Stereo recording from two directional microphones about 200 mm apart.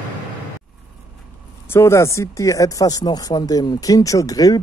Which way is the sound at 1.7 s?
15° left (ahead or behind).